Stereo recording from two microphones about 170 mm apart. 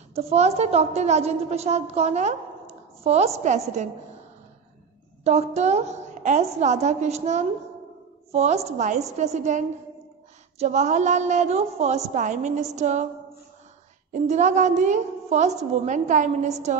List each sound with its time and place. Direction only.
0.1 s a woman's voice: 40° right (ahead or behind)
5.2 s a woman's voice: 40° right (ahead or behind)
14.1 s a woman's voice: 45° right (ahead or behind)